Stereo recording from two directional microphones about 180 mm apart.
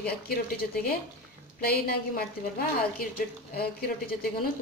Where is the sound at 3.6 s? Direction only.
60° left (ahead or behind).